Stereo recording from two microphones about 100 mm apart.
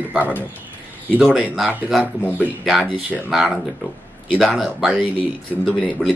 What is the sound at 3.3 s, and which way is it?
Speech, centre (ahead or behind).